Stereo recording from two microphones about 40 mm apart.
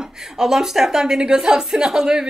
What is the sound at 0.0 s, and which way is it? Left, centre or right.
A woman's voice, centre.